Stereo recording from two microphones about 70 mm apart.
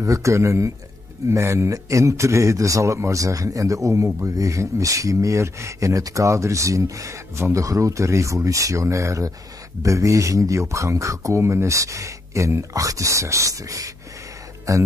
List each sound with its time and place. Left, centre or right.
0.0 s a man's voice: right